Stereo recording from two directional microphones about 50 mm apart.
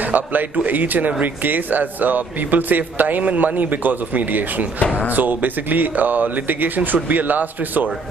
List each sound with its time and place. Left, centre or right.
0.0 s a man's voice: right